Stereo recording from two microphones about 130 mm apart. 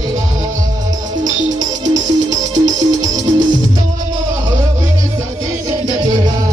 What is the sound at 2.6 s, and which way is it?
Music, 30° right (ahead or behind).